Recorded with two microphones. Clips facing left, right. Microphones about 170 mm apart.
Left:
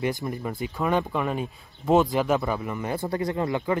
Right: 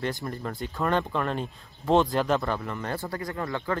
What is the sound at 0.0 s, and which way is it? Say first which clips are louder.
Speech: left 3 dB; 15° left (ahead or behind).